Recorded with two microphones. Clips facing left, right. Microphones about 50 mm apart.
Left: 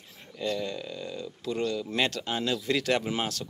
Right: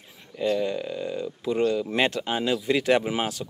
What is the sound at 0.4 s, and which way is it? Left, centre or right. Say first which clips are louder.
Speech: right 6 dB; centre.